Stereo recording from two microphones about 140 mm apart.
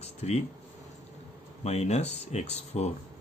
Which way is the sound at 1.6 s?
50° left (ahead or behind).